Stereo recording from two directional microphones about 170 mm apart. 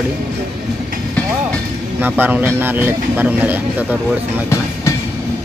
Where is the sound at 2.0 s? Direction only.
10° right (ahead or behind).